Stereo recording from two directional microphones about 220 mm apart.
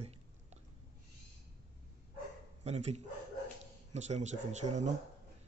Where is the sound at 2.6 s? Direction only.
30° right (ahead or behind).